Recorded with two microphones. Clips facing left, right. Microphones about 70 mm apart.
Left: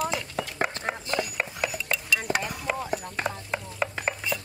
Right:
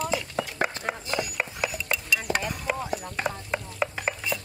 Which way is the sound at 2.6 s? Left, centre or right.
Centre.